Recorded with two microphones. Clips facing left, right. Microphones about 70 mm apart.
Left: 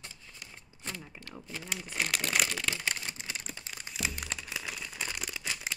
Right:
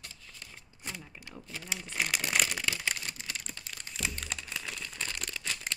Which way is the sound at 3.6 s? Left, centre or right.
Centre.